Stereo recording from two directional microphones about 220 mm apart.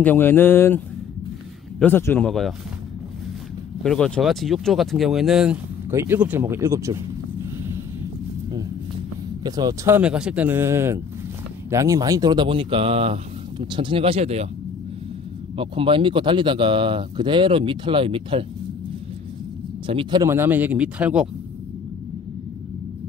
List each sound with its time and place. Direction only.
0.0 s speech: 10° left (ahead or behind)
3.8 s speech: 5° left (ahead or behind); by 7.0 s 15° right (ahead or behind)
9.4 s speech: 20° right (ahead or behind)
15.5 s speech: 25° right (ahead or behind)
19.9 s speech: 20° right (ahead or behind); by 21.3 s 5° right (ahead or behind)